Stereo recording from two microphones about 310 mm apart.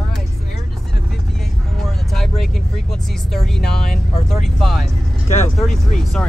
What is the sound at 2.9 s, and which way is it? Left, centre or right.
Speech, centre.